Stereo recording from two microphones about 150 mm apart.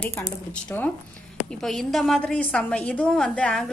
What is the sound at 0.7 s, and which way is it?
A woman's voice, 10° left (ahead or behind).